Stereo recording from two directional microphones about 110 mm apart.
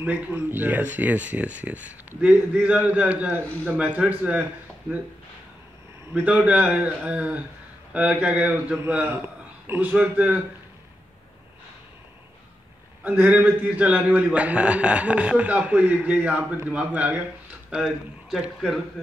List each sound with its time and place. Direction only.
0.0 s a man's voice: 15° right (ahead or behind)
6.1 s a man's voice: 10° right (ahead or behind)
13.0 s a man's voice: 15° right (ahead or behind)